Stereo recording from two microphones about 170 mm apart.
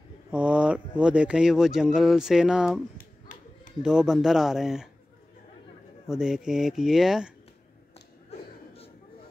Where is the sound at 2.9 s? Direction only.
50° left (ahead or behind).